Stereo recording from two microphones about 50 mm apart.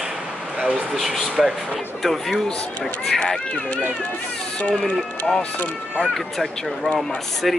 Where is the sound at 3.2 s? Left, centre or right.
Centre.